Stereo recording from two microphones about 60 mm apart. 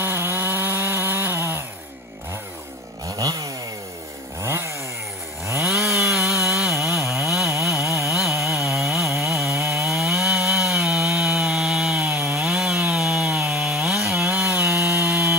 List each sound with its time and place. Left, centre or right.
0.0 s chainsaw: right
3.1 s chainsaw: right
4.4 s chainsaw: right
5.6 s chainsaw: centre
14.6 s chainsaw: right